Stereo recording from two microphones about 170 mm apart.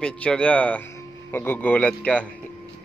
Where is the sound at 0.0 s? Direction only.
5° left (ahead or behind).